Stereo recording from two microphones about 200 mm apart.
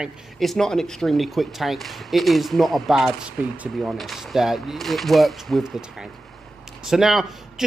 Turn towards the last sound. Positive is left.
turn(degrees=0)  # may be behind; listen again after turning